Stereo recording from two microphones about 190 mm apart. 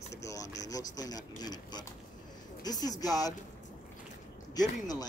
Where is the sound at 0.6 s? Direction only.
20° left (ahead or behind).